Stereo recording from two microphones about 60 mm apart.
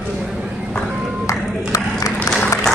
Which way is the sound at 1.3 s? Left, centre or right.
Left.